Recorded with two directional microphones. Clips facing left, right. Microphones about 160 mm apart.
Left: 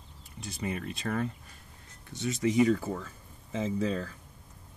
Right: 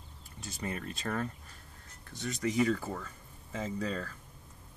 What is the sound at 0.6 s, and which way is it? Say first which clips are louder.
Speech: left 3 dB; 10° left (ahead or behind).